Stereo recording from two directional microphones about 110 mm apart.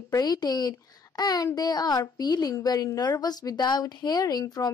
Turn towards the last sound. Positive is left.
turn(degrees=35)  # may be behind; listen again after turning